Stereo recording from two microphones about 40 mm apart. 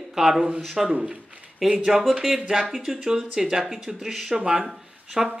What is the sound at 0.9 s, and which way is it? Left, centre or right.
Speech, right.